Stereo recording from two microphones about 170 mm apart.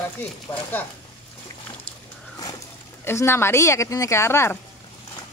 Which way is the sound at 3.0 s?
15° left (ahead or behind).